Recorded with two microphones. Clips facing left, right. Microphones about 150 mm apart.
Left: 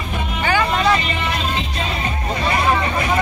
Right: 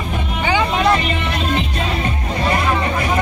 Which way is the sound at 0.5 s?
15° right (ahead or behind).